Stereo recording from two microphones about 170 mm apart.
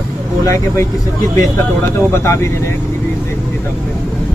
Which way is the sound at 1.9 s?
15° left (ahead or behind).